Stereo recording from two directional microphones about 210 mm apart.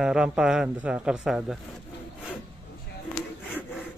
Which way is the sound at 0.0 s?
5° right (ahead or behind).